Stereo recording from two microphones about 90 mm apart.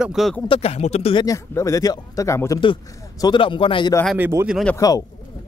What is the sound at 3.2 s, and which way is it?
Speech, 60° left (ahead or behind).